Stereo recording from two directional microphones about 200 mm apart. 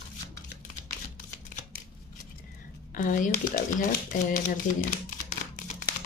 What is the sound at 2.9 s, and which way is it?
Speech, 40° left (ahead or behind).